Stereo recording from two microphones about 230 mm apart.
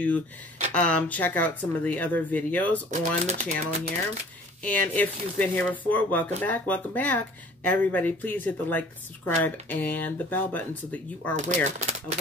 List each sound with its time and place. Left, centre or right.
0.7 s speech: centre
2.9 s speech: right
4.6 s speech: centre
11.3 s speech: right